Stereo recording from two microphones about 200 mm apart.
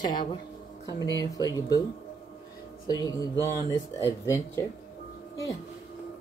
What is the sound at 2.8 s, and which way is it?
Music, 20° left (ahead or behind).